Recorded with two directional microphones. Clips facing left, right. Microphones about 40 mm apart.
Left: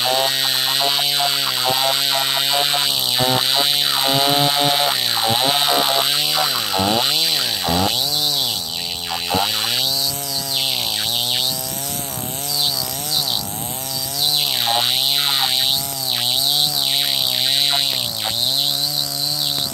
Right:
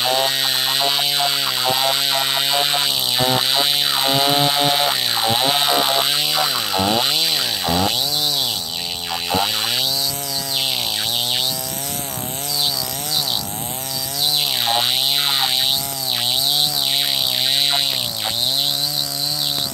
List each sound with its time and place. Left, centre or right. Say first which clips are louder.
0.0 s a sound: even; centre
7.0 s chainsaw: even; right
9.3 s chainsaw: even; centre
14.4 s chainsaw: even; centre